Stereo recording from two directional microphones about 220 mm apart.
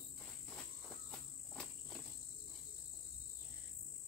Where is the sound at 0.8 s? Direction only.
5° left (ahead or behind).